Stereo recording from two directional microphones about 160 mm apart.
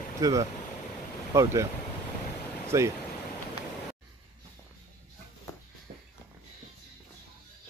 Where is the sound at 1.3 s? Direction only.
20° right (ahead or behind).